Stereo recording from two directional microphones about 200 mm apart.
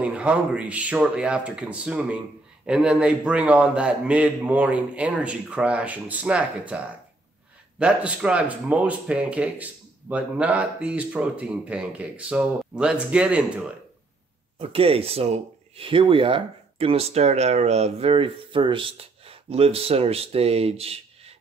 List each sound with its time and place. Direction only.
0.0 s speech: 5° right (ahead or behind)
7.8 s speech: 5° right (ahead or behind)
14.6 s speech: 30° right (ahead or behind)